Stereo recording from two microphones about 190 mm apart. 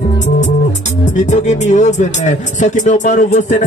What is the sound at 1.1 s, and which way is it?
Speech, 40° left (ahead or behind).